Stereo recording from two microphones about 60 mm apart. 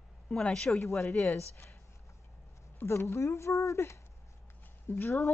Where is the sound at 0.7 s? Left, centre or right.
Left.